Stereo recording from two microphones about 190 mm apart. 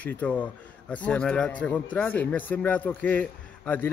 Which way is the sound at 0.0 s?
10° left (ahead or behind).